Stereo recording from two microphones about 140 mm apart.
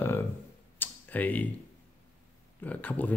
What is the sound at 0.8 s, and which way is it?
Tick-tock, 10° left (ahead or behind).